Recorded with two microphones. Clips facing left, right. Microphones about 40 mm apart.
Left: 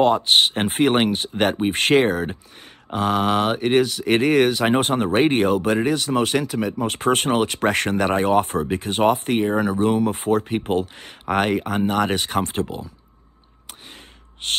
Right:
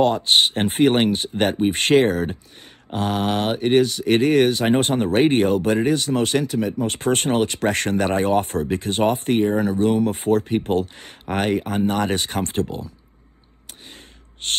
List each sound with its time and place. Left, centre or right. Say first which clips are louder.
0.0 s speech: left 1 dB; left
0.7 s speech: right 1 dB; left
5.0 s speech: right 2 dB; left
5.5 s speech: right 1 dB; left
11.0 s speech: left 3 dB; left